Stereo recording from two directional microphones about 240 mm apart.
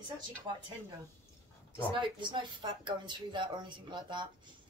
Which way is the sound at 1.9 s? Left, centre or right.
Centre.